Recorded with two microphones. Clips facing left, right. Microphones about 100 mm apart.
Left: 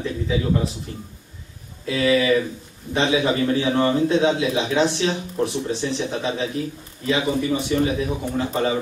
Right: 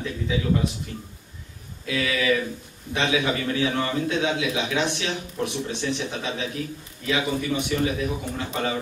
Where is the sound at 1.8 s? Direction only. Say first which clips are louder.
Left 5 dB; 35° left (ahead or behind).